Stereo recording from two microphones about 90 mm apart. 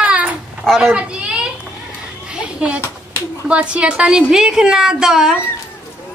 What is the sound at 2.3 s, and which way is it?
Children playing, 10° right (ahead or behind).